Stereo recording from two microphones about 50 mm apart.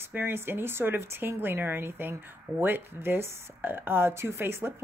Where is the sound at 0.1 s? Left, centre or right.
Right.